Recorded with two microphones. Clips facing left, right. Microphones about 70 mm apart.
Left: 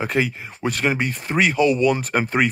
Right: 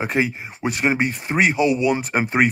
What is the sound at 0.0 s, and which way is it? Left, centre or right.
Speech, right.